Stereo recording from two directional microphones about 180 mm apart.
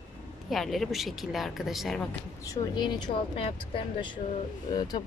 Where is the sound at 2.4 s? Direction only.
20° left (ahead or behind).